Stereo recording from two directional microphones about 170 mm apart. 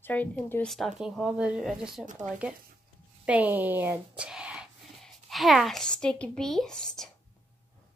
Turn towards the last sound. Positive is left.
turn(degrees=5)  # may be behind; listen again after turning